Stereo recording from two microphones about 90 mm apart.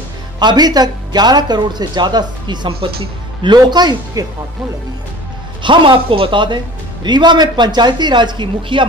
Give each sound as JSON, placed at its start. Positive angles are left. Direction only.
{"t": 0.4, "sound": "speech", "side_deg": -55}
{"t": 5.6, "sound": "speech", "side_deg": -65}